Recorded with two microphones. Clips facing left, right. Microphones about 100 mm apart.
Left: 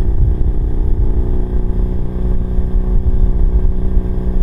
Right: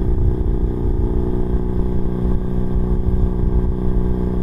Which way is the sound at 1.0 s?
15° right (ahead or behind).